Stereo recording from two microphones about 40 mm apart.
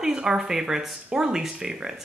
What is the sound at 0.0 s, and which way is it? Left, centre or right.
Speech, centre.